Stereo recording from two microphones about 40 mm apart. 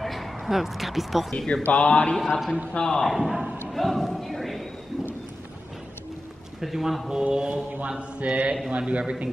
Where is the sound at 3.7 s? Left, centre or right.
Centre.